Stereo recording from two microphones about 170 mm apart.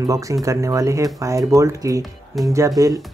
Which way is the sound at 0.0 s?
20° right (ahead or behind).